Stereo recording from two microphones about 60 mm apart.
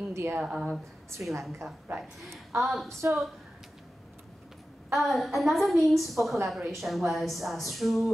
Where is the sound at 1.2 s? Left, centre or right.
Right.